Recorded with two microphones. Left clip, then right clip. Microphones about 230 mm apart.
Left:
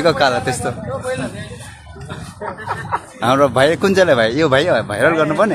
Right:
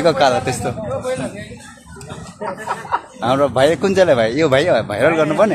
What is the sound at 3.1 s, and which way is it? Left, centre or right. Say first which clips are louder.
Speech: left 3 dB; centre.